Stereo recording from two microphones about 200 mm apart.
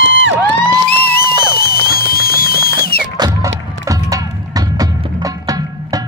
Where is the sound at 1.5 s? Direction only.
50° left (ahead or behind).